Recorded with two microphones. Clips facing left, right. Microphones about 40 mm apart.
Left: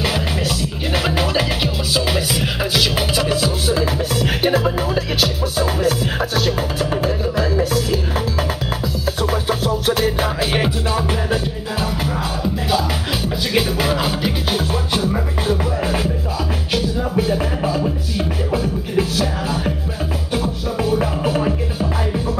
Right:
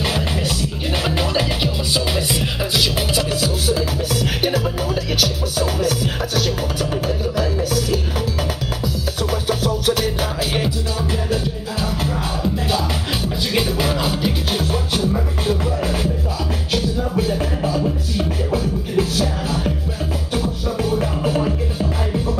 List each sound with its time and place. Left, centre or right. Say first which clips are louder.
0.9 s music: left 2 dB; centre
9.0 s music: left 3 dB; centre
11.2 s music: left 1 dB; left
13.6 s music: left 2 dB; centre
15.8 s music: left 1 dB; left
17.3 s beatboxing: left 1 dB; left
20.7 s music: left 3 dB; centre